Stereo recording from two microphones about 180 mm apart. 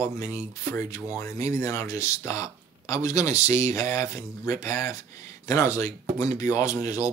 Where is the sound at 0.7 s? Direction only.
15° left (ahead or behind).